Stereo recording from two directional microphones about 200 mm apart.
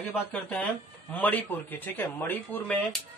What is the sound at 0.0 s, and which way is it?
A man's voice, 5° left (ahead or behind).